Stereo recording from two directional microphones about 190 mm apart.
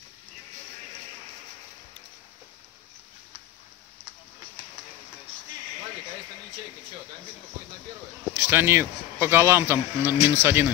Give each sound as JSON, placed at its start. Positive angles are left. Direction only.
{"t": 8.4, "sound": "speech", "side_deg": -10}